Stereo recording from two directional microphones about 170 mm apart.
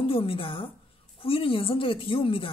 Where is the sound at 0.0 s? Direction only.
35° left (ahead or behind).